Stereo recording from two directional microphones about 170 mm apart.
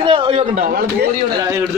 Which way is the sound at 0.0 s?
30° right (ahead or behind).